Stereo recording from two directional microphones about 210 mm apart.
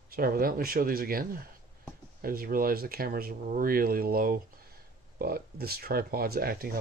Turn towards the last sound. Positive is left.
turn(degrees=-45)  # may be behind; listen again after turning